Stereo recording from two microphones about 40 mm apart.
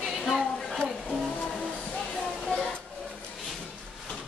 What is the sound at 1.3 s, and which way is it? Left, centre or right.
Music, centre.